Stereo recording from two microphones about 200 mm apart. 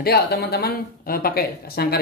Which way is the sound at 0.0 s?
50° left (ahead or behind).